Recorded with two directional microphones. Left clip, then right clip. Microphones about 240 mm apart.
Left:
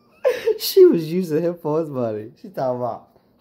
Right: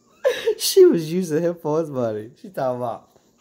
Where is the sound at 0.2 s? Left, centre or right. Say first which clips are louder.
Left 1 dB; centre.